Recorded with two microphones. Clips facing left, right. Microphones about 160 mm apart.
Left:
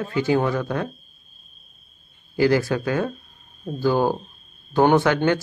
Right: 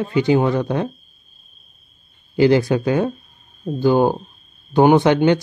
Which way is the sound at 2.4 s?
20° right (ahead or behind).